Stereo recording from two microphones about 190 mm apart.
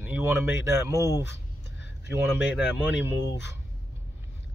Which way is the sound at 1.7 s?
65° left (ahead or behind).